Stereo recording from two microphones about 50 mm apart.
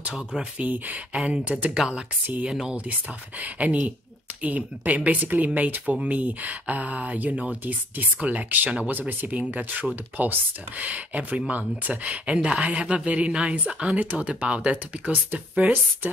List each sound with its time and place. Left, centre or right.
0.4 s speech: right
1.1 s speech: centre
1.4 s a woman's voice: right
3.3 s a woman's voice: right